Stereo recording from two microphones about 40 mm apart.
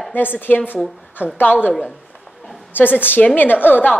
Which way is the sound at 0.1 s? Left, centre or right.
Left.